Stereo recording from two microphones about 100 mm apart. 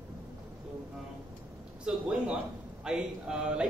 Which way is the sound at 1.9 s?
10° right (ahead or behind).